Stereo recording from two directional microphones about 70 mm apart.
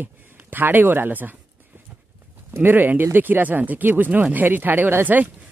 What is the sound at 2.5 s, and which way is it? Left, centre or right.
Speech, right.